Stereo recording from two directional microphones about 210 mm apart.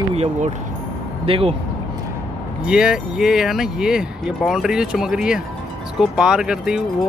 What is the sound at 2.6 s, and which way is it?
Speech, 5° right (ahead or behind).